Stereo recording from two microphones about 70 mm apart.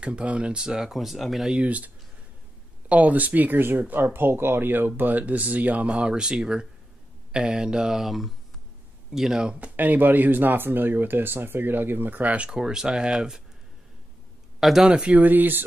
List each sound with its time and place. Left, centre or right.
0.0 s speech: centre
1.5 s speech: centre
2.9 s speech: right
9.8 s speech: right
14.6 s speech: centre; by 15.6 s right